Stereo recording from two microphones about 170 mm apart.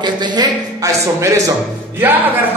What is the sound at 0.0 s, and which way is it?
A man's voice, 25° right (ahead or behind).